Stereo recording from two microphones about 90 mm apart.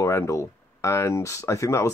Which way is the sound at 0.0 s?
35° left (ahead or behind).